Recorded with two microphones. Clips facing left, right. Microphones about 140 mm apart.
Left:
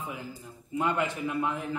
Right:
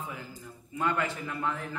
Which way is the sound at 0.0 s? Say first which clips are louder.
Left 2 dB; 15° left (ahead or behind).